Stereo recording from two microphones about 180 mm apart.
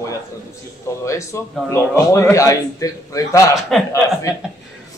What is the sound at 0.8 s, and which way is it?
A man's voice, 15° left (ahead or behind).